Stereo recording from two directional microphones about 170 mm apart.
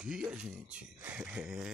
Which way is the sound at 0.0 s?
5° right (ahead or behind).